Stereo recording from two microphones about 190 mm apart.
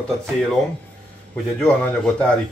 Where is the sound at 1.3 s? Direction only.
5° left (ahead or behind).